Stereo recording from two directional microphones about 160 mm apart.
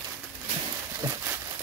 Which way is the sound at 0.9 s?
20° right (ahead or behind).